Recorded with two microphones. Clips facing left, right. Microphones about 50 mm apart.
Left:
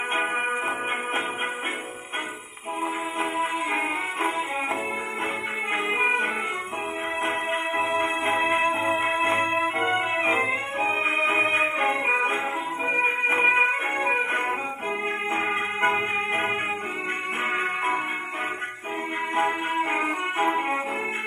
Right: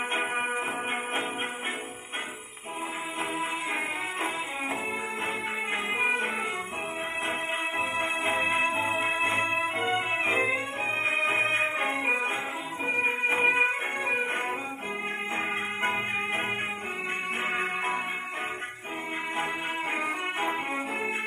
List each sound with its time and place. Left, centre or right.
0.1 s music: left
3.2 s music: left
6.0 s music: left
7.7 s music: left
9.5 s organ: left
10.4 s music: left
13.9 s music: left
17.5 s music: left
19.3 s music: left